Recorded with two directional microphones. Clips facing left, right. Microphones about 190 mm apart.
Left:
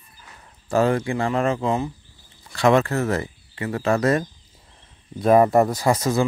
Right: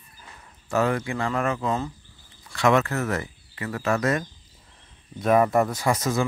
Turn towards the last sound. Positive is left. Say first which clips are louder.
# left 4 dB
turn(degrees=30)  # may be behind; listen again after turning